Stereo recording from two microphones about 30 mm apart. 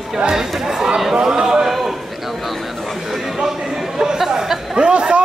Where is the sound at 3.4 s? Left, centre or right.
Centre.